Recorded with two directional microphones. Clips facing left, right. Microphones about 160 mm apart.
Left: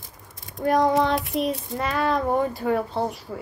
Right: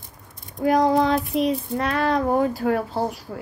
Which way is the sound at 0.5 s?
Centre (ahead or behind).